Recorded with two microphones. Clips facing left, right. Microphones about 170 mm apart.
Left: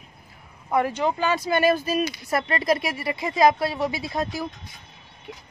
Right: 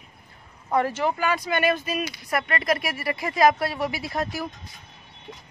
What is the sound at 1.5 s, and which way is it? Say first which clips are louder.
Speech: left 3 dB; 35° left (ahead or behind).